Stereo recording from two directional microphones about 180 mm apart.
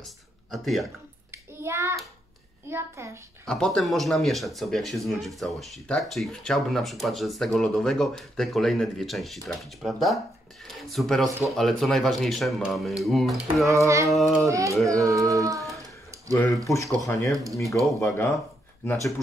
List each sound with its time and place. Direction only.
0.0 s a sound: centre (ahead or behind)
1.3 s child singing: 15° right (ahead or behind)
2.7 s speech: 15° right (ahead or behind)
3.4 s speech: 5° left (ahead or behind)
13.7 s speech: 15° right (ahead or behind)
14.0 s speech: centre (ahead or behind)
14.5 s speech: 20° right (ahead or behind)
15.7 s a sound: 15° right (ahead or behind)
16.6 s speech: 15° left (ahead or behind)
17.6 s speech: centre (ahead or behind)
18.0 s speech: 15° left (ahead or behind)